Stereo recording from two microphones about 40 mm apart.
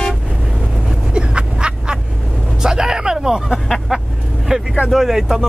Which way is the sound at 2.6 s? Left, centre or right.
Centre.